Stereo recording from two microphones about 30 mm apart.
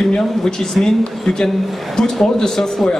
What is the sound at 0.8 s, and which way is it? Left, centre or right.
Speech, centre.